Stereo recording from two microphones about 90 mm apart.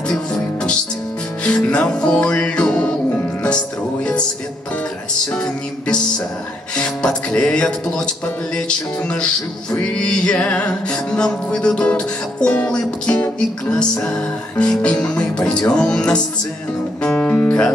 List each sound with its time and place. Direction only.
0.1 s music: 10° left (ahead or behind)
5.3 s music: 10° left (ahead or behind)